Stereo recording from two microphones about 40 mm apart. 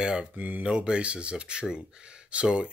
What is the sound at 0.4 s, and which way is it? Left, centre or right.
Speech, right.